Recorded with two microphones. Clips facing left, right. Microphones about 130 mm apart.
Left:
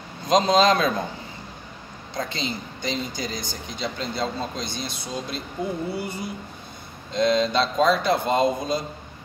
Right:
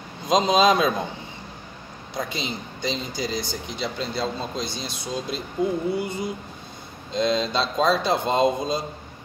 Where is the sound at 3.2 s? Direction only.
15° left (ahead or behind).